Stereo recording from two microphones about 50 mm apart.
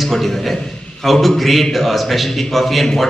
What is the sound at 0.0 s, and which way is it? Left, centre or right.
A man's voice, centre.